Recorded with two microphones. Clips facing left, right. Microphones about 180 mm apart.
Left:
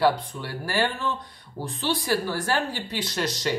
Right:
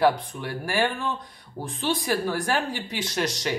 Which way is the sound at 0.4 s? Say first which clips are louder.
Right 1 dB; 15° right (ahead or behind).